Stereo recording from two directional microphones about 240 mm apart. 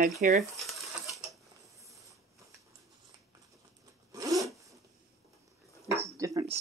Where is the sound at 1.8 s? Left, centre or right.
Centre.